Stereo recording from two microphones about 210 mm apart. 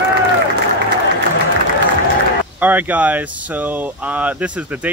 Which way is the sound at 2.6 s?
10° right (ahead or behind).